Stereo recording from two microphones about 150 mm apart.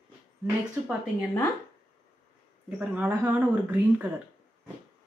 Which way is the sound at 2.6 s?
10° right (ahead or behind).